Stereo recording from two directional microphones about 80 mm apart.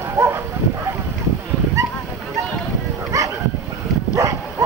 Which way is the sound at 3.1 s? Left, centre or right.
Right.